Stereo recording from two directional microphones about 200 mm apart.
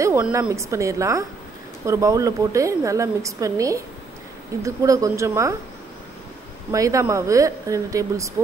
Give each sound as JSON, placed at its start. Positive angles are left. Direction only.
{"t": 0.0, "sound": "a woman's voice", "side_deg": -10}
{"t": 6.7, "sound": "a woman's voice", "side_deg": -15}